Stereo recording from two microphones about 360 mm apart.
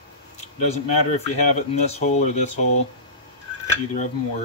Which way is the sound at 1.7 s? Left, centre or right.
Centre.